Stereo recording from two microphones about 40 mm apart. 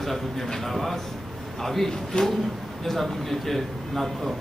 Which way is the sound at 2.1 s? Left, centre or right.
Left.